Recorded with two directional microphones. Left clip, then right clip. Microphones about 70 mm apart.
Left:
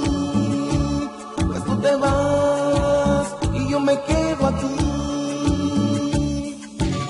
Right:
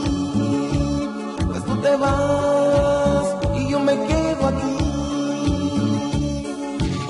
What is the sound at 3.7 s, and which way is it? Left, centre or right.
Music, left.